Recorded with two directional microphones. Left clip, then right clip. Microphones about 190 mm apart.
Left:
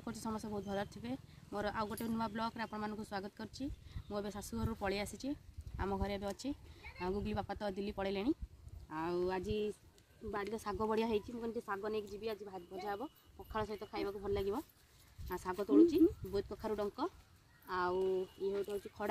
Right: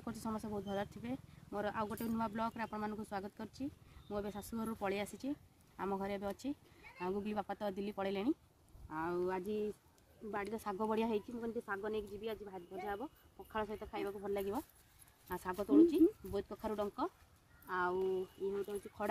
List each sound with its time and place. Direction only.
0.0 s a woman's voice: 5° right (ahead or behind)
10.5 s a woman's voice: 15° right (ahead or behind)
15.2 s speech: 30° right (ahead or behind)
15.5 s a woman's voice: 15° right (ahead or behind)